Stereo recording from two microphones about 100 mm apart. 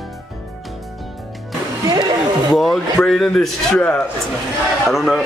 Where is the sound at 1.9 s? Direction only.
45° right (ahead or behind).